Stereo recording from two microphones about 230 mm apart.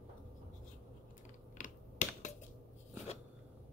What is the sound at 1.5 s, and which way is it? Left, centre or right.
Finger snapping, left.